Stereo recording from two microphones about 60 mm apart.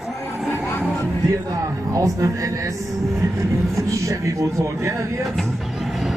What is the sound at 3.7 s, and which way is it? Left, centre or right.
A man's voice, right.